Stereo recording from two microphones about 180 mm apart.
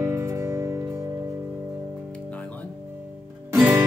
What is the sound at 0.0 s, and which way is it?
Music, 15° right (ahead or behind).